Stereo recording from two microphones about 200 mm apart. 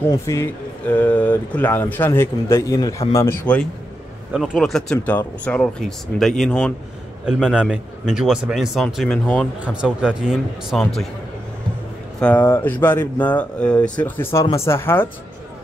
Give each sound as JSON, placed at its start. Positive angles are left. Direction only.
{"t": 0.0, "sound": "speech", "side_deg": 15}
{"t": 9.6, "sound": "speech", "side_deg": -5}
{"t": 12.2, "sound": "speech", "side_deg": 10}